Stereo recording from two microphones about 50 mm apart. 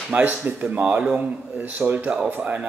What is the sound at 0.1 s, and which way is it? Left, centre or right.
Speech, right.